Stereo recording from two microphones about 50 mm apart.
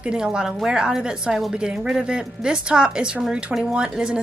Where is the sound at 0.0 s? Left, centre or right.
Centre.